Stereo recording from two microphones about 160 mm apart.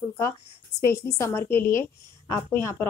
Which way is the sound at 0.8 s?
80° left.